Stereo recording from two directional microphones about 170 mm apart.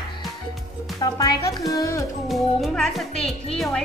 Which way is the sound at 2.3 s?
Centre (ahead or behind).